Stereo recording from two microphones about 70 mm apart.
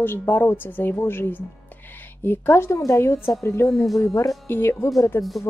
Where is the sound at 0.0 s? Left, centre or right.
Left.